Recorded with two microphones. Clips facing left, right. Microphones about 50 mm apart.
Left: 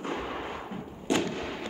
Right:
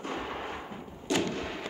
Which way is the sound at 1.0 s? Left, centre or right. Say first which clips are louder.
Left 1 dB; centre.